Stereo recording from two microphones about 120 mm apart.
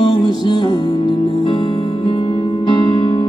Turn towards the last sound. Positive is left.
turn(degrees=40)  # may be behind; listen again after turning